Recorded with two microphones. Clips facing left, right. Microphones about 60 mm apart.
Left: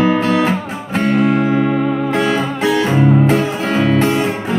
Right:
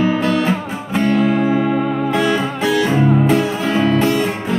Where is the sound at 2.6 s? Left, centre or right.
Left.